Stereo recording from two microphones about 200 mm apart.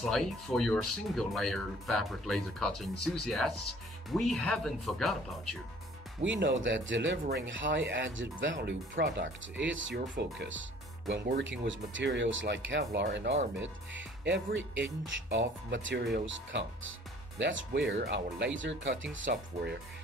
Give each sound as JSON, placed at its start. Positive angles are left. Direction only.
{"t": 0.0, "sound": "speech", "side_deg": 0}
{"t": 6.2, "sound": "speech", "side_deg": -65}
{"t": 11.6, "sound": "speech", "side_deg": -70}
{"t": 13.6, "sound": "speech", "side_deg": -65}
{"t": 17.4, "sound": "speech", "side_deg": -65}
{"t": 19.2, "sound": "speech", "side_deg": -55}